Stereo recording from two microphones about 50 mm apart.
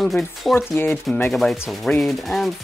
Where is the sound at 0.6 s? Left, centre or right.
Left.